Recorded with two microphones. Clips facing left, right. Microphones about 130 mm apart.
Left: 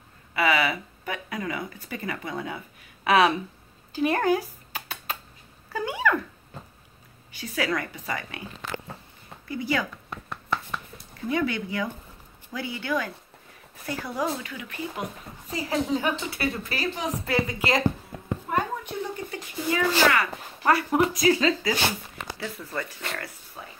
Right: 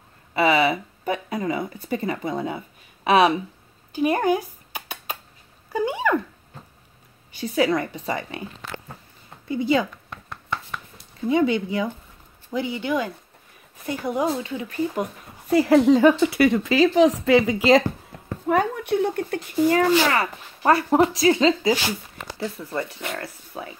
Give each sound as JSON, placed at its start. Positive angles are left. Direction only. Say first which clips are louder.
{"t": 0.3, "sound": "speech", "louder": "right 5 dB", "side_deg": -25}
{"t": 3.9, "sound": "a sound", "louder": "right 2 dB", "side_deg": -20}
{"t": 5.7, "sound": "speech", "louder": "right 3 dB", "side_deg": -25}
{"t": 7.3, "sound": "a woman's voice", "louder": "right 7 dB", "side_deg": -25}
{"t": 9.5, "sound": "a woman's voice", "louder": "right 6 dB", "side_deg": -20}
{"t": 10.0, "sound": "chopping", "louder": "left 1 dB", "side_deg": 5}
{"t": 11.2, "sound": "a woman's voice", "louder": "right 6 dB", "side_deg": -20}
{"t": 15.0, "sound": "speech", "louder": "right 6 dB", "side_deg": -65}
{"t": 18.5, "sound": "speech", "louder": "right 8 dB", "side_deg": -70}
{"t": 20.1, "sound": "a woman's voice", "louder": "right 1 dB", "side_deg": -30}
{"t": 23.5, "sound": "speech", "louder": "right 9 dB", "side_deg": -65}